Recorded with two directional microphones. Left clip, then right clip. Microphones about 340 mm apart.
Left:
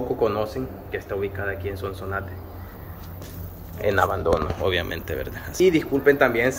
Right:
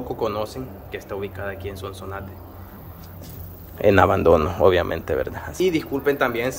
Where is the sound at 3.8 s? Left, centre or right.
Right.